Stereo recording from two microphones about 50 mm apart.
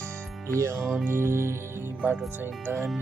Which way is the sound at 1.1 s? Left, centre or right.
Right.